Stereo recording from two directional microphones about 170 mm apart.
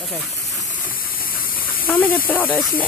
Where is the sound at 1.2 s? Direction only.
60° left (ahead or behind).